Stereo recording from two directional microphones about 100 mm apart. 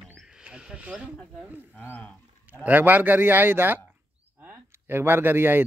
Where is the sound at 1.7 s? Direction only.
15° left (ahead or behind).